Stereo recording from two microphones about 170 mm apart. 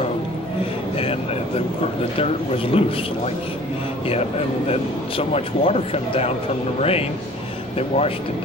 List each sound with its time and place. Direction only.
2.1 s a man's voice: 35° left (ahead or behind)
4.6 s a man's voice: 35° left (ahead or behind)